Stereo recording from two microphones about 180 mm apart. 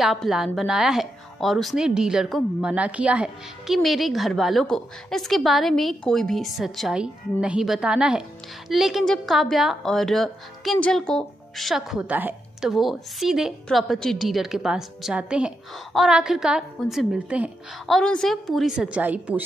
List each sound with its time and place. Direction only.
0.0 s a woman's voice: centre (ahead or behind)